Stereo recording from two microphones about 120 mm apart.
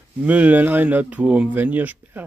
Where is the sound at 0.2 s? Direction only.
15° right (ahead or behind).